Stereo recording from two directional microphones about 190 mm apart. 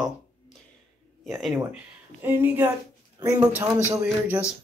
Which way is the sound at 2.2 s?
10° right (ahead or behind).